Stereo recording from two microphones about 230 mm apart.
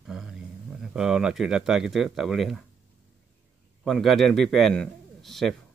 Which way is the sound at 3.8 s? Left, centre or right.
Centre.